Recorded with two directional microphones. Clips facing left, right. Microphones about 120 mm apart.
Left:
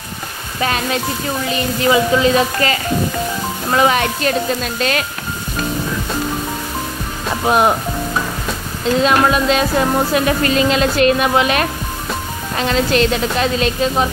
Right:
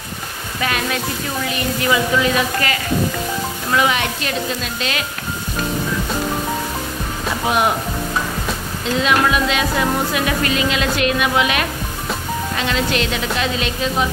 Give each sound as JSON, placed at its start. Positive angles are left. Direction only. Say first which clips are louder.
{"t": 0.6, "sound": "speech", "louder": "left 3 dB", "side_deg": 35}
{"t": 1.5, "sound": "frying", "louder": "left 4 dB", "side_deg": 30}
{"t": 3.7, "sound": "speech", "louder": "left 4 dB", "side_deg": 40}
{"t": 7.4, "sound": "speech", "louder": "left 4 dB", "side_deg": 40}
{"t": 9.0, "sound": "speech", "louder": "left 2 dB", "side_deg": 40}